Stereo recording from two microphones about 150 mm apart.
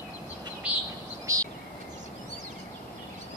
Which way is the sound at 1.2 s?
20° right (ahead or behind).